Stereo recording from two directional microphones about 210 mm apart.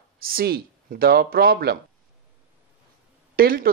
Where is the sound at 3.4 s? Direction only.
45° right (ahead or behind).